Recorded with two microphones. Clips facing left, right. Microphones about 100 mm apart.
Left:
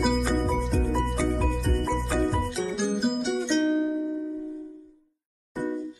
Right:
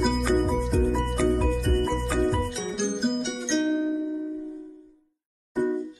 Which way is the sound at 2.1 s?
Centre (ahead or behind).